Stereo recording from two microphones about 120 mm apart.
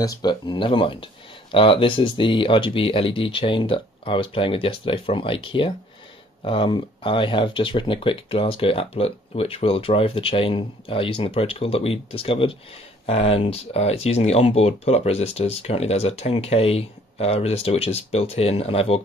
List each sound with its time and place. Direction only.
0.0 s speech: 35° left (ahead or behind); by 18.9 s 55° left (ahead or behind)